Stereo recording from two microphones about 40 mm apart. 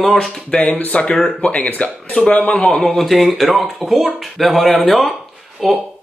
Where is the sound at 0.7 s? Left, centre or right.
Left.